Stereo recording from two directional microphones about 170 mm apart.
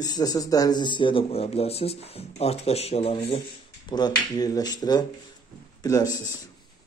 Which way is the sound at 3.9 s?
25° left (ahead or behind).